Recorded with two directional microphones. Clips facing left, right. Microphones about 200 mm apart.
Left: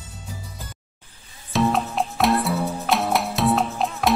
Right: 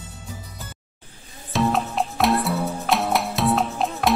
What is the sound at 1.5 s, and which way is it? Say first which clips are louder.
Music: left 1 dB; centre (ahead or behind).